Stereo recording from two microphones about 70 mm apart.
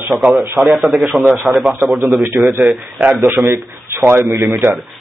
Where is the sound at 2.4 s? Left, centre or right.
Right.